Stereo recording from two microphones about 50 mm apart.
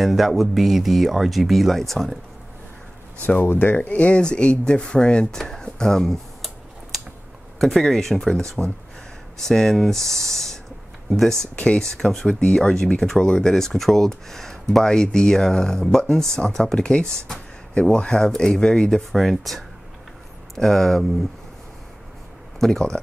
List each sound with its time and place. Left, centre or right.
0.0 s speech: centre
3.4 s speech: left; by 6.1 s centre
7.5 s speech: centre
11.5 s speech: left
11.8 s speech: centre
19.1 s speech: centre
22.6 s speech: centre